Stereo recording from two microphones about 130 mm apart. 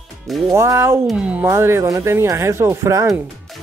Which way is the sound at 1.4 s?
20° right (ahead or behind).